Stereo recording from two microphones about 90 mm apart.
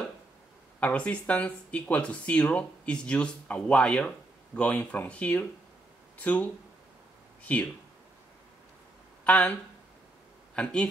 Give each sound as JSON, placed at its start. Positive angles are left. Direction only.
{"t": 0.7, "sound": "speech", "side_deg": 15}
{"t": 9.2, "sound": "speech", "side_deg": 15}
{"t": 10.5, "sound": "speech", "side_deg": 10}